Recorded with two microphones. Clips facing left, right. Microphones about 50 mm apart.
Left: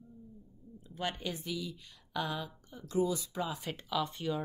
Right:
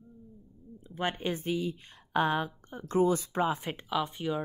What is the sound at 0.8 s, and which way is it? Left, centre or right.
Speech, right.